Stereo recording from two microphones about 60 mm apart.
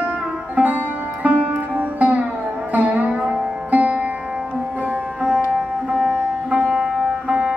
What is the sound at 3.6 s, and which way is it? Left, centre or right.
Music, right.